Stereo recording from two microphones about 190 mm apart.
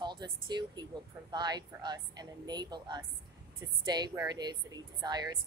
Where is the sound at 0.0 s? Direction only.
25° right (ahead or behind).